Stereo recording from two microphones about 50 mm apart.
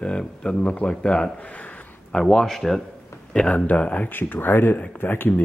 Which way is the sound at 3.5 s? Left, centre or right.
Left.